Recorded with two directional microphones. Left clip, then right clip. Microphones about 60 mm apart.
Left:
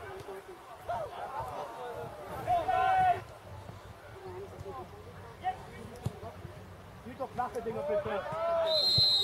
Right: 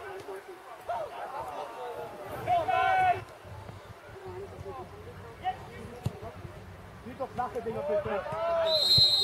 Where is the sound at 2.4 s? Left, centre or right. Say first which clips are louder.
Right 2 dB; right.